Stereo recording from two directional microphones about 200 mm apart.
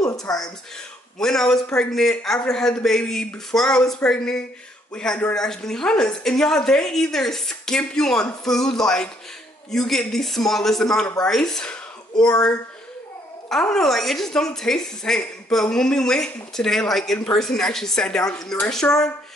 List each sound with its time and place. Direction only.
0.1 s speech: 20° left (ahead or behind)
1.1 s a woman's voice: 5° left (ahead or behind)
13.5 s a woman's voice: centre (ahead or behind)